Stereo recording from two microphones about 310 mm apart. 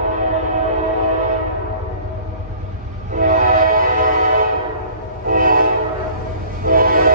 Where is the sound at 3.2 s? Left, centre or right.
Right.